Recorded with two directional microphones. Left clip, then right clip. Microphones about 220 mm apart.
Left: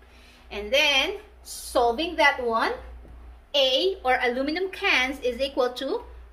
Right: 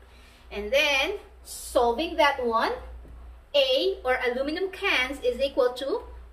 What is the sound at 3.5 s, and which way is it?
A woman's voice, 40° left (ahead or behind).